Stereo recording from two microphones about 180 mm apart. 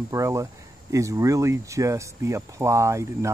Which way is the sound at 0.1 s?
15° right (ahead or behind).